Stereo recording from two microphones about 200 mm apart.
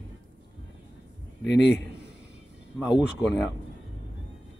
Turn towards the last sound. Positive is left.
turn(degrees=0)  # may be behind; listen again after turning